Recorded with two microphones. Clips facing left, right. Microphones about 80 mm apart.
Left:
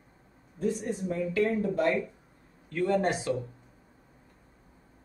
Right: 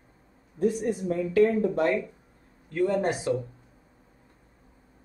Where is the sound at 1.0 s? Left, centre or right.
Right.